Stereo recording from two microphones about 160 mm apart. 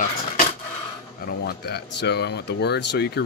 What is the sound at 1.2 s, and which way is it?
Speech, 90° left.